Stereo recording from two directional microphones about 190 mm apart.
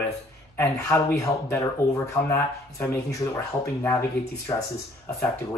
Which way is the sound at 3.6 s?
15° left (ahead or behind).